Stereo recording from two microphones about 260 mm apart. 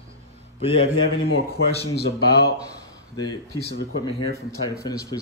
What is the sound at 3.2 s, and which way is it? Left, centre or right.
Speech, centre.